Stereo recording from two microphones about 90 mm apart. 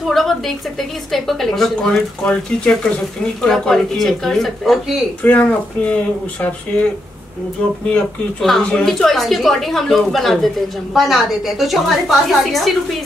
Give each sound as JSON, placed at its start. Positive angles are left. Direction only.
{"t": 0.0, "sound": "a woman's voice", "side_deg": 0}
{"t": 5.2, "sound": "speech", "side_deg": 15}
{"t": 7.9, "sound": "a woman's voice", "side_deg": 5}